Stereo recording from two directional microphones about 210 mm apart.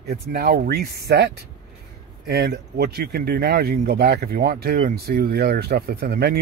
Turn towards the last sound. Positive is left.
turn(degrees=-45)  # may be behind; listen again after turning